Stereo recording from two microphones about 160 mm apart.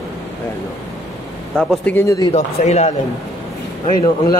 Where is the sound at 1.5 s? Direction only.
5° left (ahead or behind).